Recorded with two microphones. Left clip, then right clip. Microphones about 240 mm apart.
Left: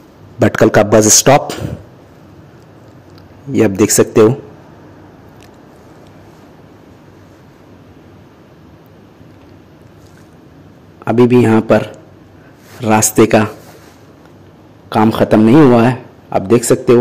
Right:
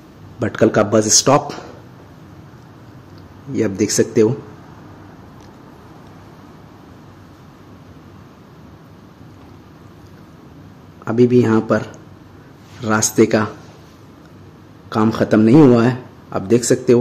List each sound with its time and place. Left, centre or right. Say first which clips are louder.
0.4 s a man's voice: left 6 dB; left
3.5 s a man's voice: left 6 dB; centre
11.1 s a man's voice: left 4 dB; centre
14.9 s a man's voice: left 5 dB; centre